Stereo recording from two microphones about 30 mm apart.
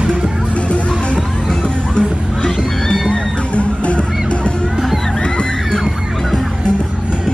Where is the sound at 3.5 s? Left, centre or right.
Left.